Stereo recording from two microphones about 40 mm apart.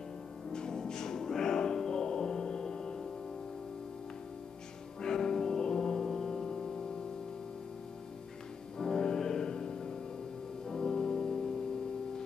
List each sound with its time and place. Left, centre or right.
0.5 s music: centre
5.0 s music: centre
8.7 s music: centre